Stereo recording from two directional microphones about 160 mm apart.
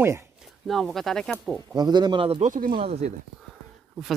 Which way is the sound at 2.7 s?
40° right (ahead or behind).